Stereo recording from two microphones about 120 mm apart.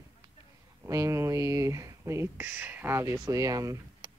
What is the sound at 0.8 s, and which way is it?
Speech, 25° right (ahead or behind).